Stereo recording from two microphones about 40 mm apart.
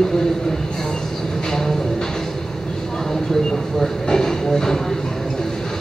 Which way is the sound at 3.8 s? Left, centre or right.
Centre.